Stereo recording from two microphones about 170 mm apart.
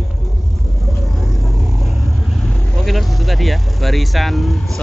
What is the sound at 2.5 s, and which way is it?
Speech, centre (ahead or behind).